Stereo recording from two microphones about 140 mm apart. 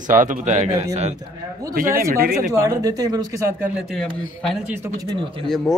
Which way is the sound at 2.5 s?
25° right (ahead or behind).